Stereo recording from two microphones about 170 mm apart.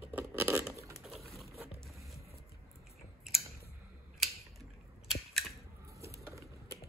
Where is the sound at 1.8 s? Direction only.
Centre (ahead or behind).